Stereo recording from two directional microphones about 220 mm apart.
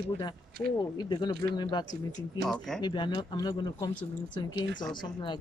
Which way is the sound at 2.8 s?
20° left (ahead or behind).